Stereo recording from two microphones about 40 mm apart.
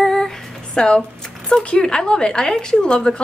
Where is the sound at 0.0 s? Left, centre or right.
Centre.